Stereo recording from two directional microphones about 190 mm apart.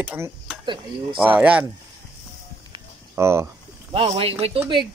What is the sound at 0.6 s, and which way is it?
Speech, 25° right (ahead or behind).